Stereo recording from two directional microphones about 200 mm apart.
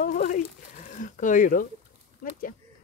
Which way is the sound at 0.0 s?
40° left (ahead or behind).